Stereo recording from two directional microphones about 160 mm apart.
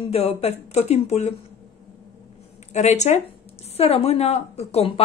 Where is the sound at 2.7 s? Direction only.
45° left (ahead or behind).